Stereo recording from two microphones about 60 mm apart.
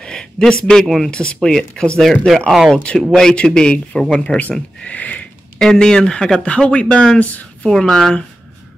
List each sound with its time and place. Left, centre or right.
0.0 s a man's voice: centre
1.1 s speech: centre
5.6 s speech: centre